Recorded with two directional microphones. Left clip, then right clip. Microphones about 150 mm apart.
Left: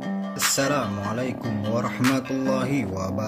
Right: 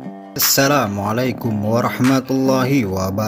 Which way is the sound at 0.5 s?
40° right (ahead or behind).